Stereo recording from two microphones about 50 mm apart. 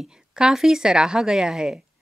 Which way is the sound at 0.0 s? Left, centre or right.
Centre.